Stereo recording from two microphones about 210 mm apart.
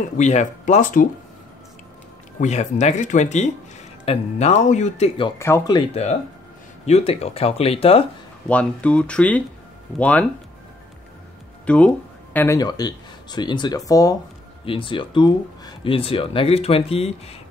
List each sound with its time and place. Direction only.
0.2 s speech: 35° left (ahead or behind)
2.4 s speech: 35° left (ahead or behind)
5.4 s speech: 15° left (ahead or behind)
8.5 s speech: 5° left (ahead or behind)
11.6 s speech: 5° left (ahead or behind); by 17.4 s 30° left (ahead or behind)